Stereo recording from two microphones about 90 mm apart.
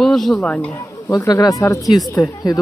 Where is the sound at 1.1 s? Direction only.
40° left (ahead or behind).